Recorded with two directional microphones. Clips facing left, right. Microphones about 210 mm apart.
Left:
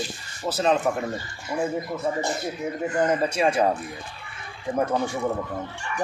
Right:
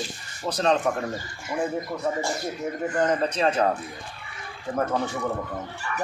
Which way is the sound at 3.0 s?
10° left (ahead or behind).